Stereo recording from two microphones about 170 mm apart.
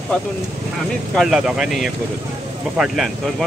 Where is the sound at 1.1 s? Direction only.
Centre (ahead or behind).